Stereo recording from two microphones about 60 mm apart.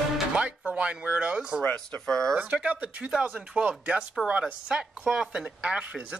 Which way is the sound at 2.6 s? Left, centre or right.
Right.